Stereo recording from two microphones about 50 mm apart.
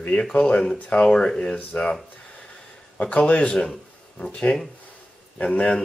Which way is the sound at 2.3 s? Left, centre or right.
Left.